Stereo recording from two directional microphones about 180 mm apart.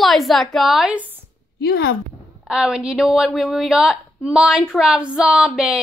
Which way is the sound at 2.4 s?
5° right (ahead or behind).